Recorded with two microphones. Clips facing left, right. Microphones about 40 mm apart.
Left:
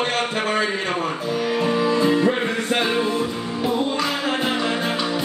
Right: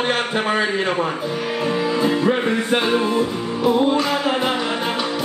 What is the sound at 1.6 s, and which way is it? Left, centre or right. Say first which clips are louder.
Music: even; centre.